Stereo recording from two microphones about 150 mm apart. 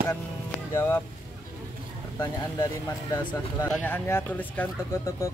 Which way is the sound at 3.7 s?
10° left (ahead or behind).